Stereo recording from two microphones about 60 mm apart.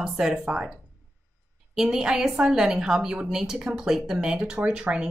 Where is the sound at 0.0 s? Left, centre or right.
Centre.